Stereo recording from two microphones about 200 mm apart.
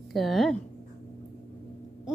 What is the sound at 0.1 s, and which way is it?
Speech, centre (ahead or behind).